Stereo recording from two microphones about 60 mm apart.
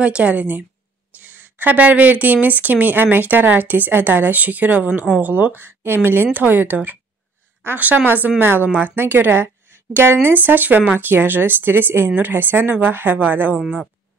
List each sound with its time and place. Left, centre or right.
0.0 s speech: right
5.2 s speech: right
8.6 s speech: right
8.9 s a woman's voice: right